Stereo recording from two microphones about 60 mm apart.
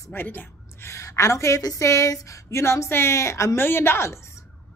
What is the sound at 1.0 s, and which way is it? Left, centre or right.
A woman's voice, left.